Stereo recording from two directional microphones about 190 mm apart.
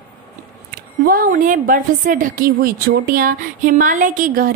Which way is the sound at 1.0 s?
50° right (ahead or behind).